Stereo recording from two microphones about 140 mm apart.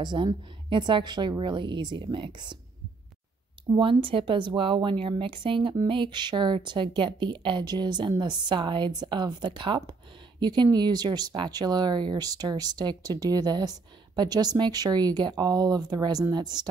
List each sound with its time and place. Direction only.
0.0 s a woman's voice: 30° right (ahead or behind)
3.7 s a woman's voice: 35° right (ahead or behind)